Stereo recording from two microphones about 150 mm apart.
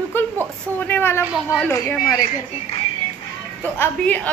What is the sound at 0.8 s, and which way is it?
A woman's voice, 15° left (ahead or behind).